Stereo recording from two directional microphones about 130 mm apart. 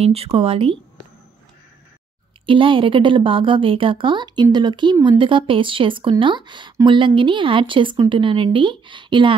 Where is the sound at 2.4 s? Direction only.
40° right (ahead or behind).